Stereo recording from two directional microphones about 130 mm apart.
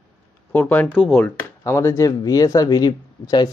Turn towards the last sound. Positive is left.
turn(degrees=30)  # may be behind; listen again after turning